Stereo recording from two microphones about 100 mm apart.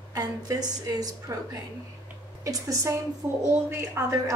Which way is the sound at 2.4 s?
35° right (ahead or behind).